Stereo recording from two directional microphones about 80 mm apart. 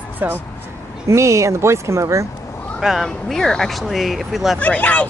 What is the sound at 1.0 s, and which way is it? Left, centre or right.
Speech, right.